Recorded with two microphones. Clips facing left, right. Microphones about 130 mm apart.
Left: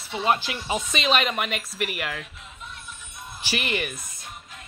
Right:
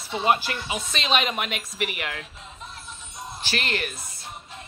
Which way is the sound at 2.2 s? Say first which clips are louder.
Right 1 dB; 30° right (ahead or behind).